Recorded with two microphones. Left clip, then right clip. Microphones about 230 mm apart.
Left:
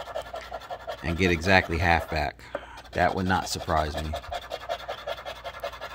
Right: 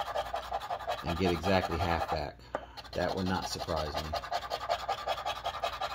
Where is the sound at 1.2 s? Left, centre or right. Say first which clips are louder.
Left 8 dB; left.